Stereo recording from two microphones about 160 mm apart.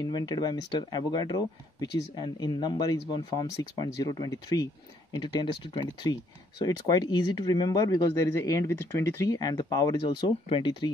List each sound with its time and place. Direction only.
0.0 s speech: 25° left (ahead or behind)
6.6 s speech: 25° left (ahead or behind)